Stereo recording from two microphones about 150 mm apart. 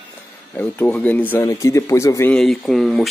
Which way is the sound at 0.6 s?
10° left (ahead or behind).